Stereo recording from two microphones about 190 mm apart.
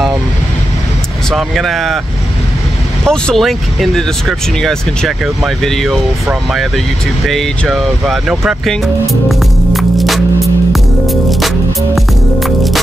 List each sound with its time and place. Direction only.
1.3 s speech: centre (ahead or behind)
3.1 s speech: centre (ahead or behind)
7.2 s speech: centre (ahead or behind)
11.2 s music: centre (ahead or behind)